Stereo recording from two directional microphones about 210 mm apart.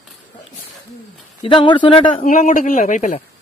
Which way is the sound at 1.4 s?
25° left (ahead or behind).